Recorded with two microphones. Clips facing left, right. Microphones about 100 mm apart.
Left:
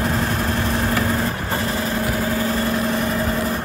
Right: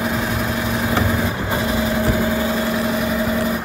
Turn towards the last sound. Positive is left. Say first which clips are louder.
# right 2 dB
turn(degrees=-5)  # may be behind; listen again after turning